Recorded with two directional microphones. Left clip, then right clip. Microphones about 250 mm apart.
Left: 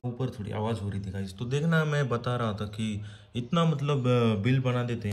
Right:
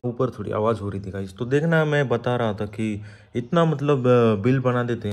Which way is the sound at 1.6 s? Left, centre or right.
Right.